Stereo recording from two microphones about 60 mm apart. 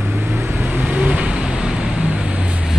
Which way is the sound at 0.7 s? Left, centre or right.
Right.